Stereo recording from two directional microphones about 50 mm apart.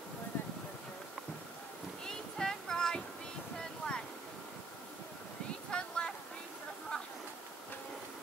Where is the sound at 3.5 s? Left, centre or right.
Centre.